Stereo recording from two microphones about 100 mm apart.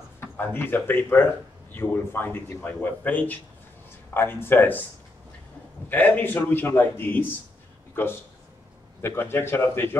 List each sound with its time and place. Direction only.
0.2 s speech: 20° left (ahead or behind)
5.9 s speech: 20° left (ahead or behind)
9.0 s speech: 25° left (ahead or behind)